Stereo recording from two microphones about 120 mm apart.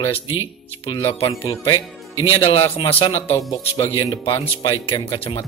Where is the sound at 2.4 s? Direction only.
45° left (ahead or behind).